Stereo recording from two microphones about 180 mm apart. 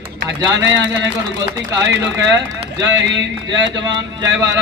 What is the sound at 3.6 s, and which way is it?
A man's voice, 25° right (ahead or behind).